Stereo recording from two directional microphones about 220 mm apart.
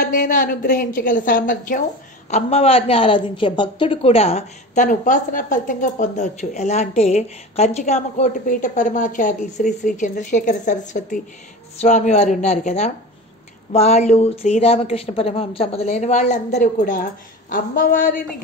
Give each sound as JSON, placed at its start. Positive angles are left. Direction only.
{"t": 0.1, "sound": "a woman's voice", "side_deg": 40}